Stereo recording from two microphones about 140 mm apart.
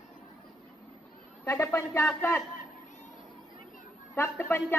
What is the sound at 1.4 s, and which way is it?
Speech, 20° left (ahead or behind).